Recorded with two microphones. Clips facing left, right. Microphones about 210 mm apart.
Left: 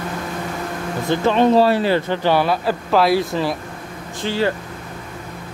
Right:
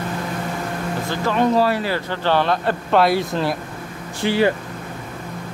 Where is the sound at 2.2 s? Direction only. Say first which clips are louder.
Right 2 dB; 10° left (ahead or behind).